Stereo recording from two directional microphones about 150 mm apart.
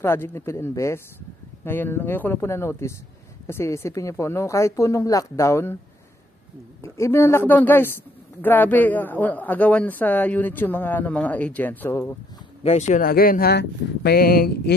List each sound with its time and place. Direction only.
0.0 s a man's voice: 15° left (ahead or behind)
6.8 s a man's voice: 15° left (ahead or behind)
12.6 s speech: 50° left (ahead or behind)
13.0 s speech: 75° left (ahead or behind); by 14.8 s 90° left